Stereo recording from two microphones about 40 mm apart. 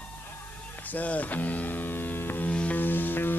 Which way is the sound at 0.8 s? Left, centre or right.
Left.